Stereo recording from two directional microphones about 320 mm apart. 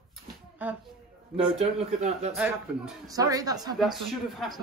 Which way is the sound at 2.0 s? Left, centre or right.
Centre.